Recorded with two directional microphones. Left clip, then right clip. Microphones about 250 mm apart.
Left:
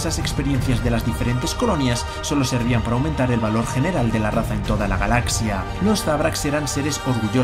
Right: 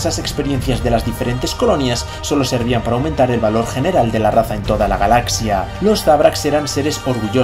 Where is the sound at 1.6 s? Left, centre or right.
Centre.